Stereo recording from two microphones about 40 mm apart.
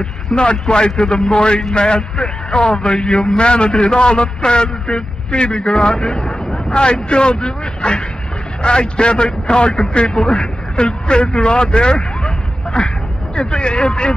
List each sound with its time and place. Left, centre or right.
0.4 s a man's voice: left